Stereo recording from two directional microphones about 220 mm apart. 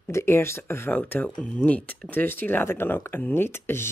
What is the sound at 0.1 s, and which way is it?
Speech, 10° left (ahead or behind).